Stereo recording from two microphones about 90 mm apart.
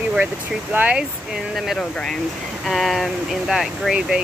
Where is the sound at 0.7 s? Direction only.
15° right (ahead or behind).